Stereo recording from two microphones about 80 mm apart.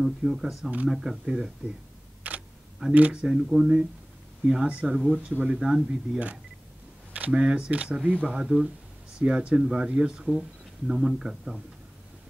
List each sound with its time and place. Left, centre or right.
0.0 s speech: centre
2.3 s camera: right
2.9 s speech: centre
3.2 s speech: centre